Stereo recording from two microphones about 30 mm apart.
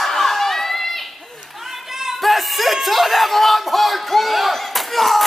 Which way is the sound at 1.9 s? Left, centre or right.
Centre.